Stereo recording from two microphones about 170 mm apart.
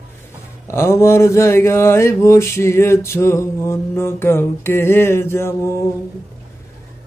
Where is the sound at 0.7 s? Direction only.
15° left (ahead or behind).